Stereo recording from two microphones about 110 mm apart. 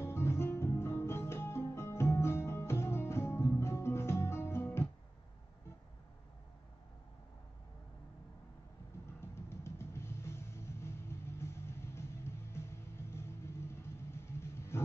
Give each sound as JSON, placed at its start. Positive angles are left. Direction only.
{"t": 0.0, "sound": "music", "side_deg": 25}
{"t": 9.2, "sound": "music", "side_deg": 25}